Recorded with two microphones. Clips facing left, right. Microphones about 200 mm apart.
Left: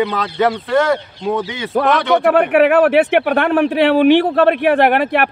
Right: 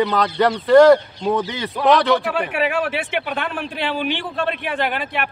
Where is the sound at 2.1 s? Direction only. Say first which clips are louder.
Left 9 dB; 60° left (ahead or behind).